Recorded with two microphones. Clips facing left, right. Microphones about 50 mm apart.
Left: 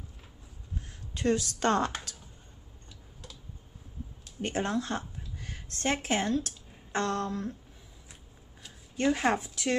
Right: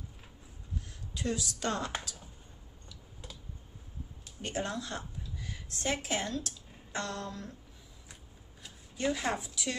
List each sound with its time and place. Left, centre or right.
1.1 s speech: left
4.4 s a sound: left
6.0 s speech: left
8.9 s speech: left